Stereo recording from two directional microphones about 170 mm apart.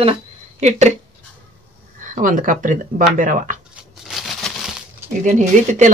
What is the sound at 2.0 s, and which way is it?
Speech, 50° right (ahead or behind).